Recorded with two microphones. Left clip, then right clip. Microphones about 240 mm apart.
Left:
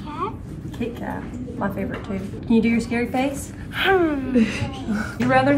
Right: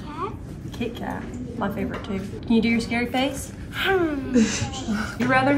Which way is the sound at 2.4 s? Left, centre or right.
Centre.